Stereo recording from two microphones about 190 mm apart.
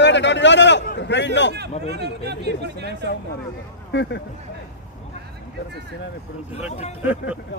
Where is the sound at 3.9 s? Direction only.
70° left (ahead or behind).